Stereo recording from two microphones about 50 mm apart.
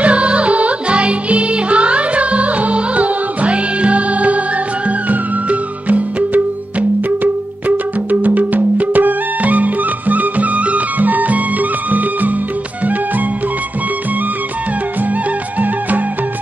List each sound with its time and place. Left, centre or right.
0.0 s music: right
7.6 s music: right